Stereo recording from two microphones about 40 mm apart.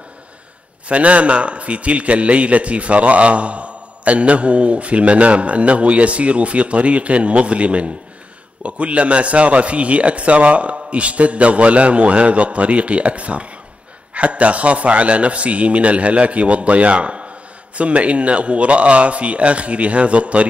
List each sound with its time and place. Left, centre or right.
0.8 s a man's voice: right